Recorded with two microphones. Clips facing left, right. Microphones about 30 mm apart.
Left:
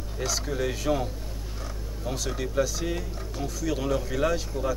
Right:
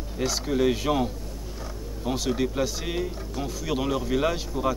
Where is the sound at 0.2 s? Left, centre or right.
Centre.